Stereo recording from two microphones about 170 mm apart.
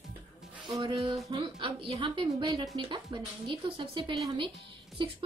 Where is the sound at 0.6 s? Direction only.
30° right (ahead or behind).